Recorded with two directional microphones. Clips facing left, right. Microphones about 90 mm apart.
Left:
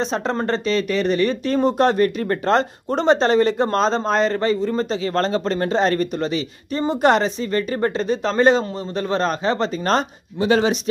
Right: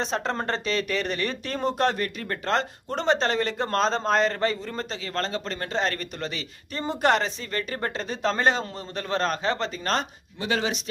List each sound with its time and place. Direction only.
0.0 s speech: centre (ahead or behind)
1.8 s speech: 30° left (ahead or behind); by 4.8 s 5° left (ahead or behind)
4.9 s speech: 30° left (ahead or behind); by 9.6 s 10° left (ahead or behind)
9.6 s speech: 25° left (ahead or behind)